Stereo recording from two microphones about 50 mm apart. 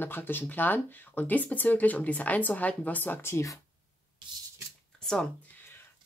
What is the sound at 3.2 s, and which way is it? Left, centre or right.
Speech, left.